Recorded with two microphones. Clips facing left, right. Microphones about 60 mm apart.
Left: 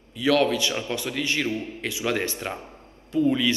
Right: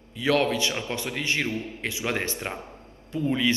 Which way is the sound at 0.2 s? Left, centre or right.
Right.